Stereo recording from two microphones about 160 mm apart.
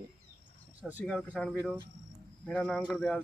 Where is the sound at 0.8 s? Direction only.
10° right (ahead or behind).